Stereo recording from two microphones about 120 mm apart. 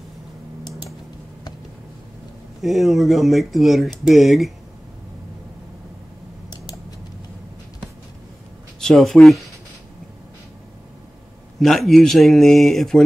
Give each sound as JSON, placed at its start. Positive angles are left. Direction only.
{"t": 2.6, "sound": "speech", "side_deg": 0}
{"t": 6.5, "sound": "typing", "side_deg": 35}
{"t": 8.8, "sound": "speech", "side_deg": 0}
{"t": 11.6, "sound": "speech", "side_deg": 0}